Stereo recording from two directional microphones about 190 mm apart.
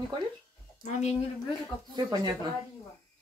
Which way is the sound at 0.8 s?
40° left (ahead or behind).